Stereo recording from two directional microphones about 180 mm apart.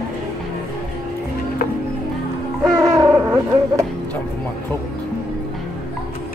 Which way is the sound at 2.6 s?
20° right (ahead or behind).